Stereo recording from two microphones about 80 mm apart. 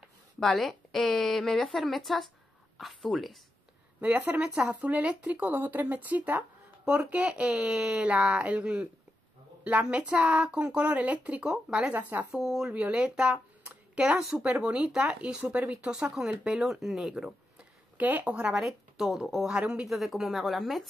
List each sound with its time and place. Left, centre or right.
0.4 s speech: centre
4.0 s speech: centre
11.9 s speech: right
12.4 s speech: centre
17.9 s speech: centre